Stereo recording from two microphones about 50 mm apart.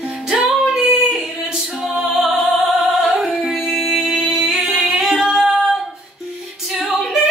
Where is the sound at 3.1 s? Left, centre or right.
Centre.